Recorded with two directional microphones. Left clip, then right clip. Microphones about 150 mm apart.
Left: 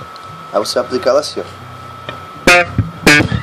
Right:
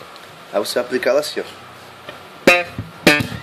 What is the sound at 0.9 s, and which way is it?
Speech, 5° left (ahead or behind).